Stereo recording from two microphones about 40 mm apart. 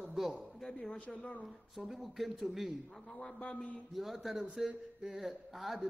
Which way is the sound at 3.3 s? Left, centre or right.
Left.